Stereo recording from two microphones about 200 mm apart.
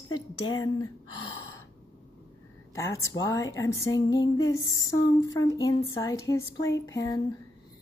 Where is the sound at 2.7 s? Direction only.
15° left (ahead or behind).